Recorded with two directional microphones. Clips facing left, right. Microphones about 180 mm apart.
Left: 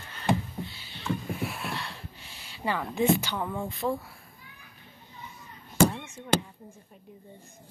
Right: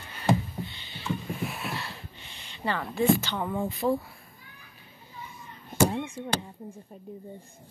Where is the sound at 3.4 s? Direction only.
5° right (ahead or behind).